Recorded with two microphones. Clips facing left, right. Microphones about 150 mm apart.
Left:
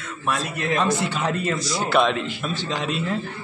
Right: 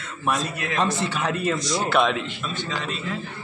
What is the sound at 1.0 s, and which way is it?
Speech, 15° left (ahead or behind).